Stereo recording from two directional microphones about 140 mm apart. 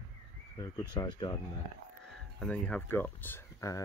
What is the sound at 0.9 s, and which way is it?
Speech, 30° left (ahead or behind).